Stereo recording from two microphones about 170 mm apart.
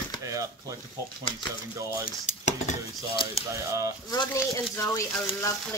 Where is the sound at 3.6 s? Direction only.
20° right (ahead or behind).